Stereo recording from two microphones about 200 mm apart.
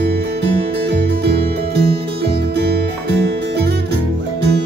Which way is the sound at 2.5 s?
55° right (ahead or behind).